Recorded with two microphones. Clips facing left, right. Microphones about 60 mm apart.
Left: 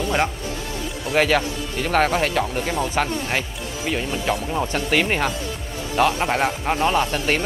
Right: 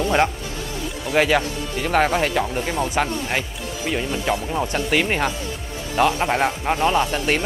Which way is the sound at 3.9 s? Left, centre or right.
Centre.